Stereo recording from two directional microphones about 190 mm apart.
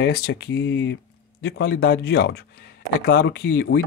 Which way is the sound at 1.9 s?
55° left (ahead or behind).